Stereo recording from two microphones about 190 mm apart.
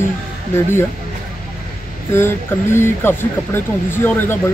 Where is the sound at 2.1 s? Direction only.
10° left (ahead or behind).